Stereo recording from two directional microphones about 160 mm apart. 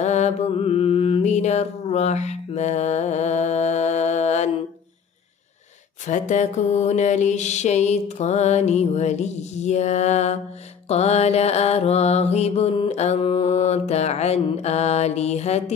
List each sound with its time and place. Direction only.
0.0 s mantra: 45° left (ahead or behind)
6.0 s mantra: 50° left (ahead or behind)